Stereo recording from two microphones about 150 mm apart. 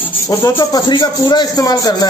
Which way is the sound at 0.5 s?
30° left (ahead or behind).